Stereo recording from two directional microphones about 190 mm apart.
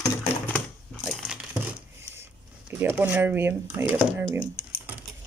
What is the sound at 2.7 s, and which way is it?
Speech, 10° right (ahead or behind).